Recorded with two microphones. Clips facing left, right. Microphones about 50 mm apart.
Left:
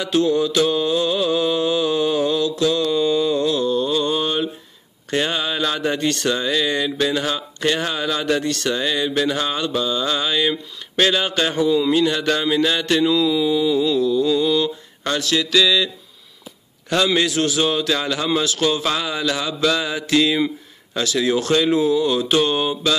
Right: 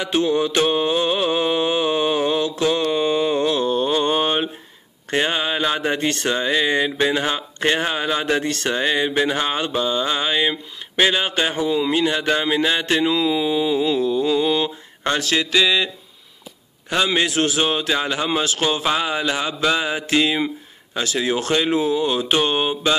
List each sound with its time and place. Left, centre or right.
0.0 s mantra: right
5.1 s speech: right
16.9 s speech: right